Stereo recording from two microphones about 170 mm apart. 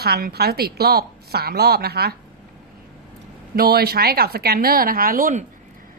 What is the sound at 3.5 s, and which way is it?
A woman's voice, 65° right (ahead or behind).